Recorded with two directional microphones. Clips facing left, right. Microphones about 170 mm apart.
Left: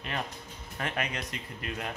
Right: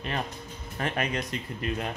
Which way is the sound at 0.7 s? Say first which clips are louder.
Right 4 dB; 35° right (ahead or behind).